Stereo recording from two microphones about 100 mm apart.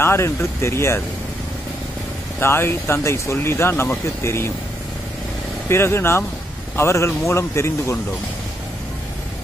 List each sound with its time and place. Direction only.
0.0 s speech: 25° left (ahead or behind)
2.4 s speech: 25° left (ahead or behind)
5.7 s speech: 25° left (ahead or behind)